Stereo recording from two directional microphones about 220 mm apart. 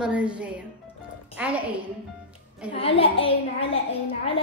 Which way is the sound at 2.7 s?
25° left (ahead or behind).